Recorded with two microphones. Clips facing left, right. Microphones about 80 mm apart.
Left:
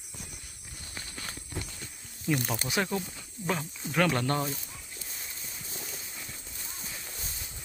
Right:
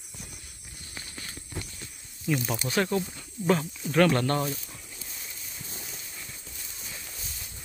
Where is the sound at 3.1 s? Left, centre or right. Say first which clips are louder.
Right 7 dB; centre.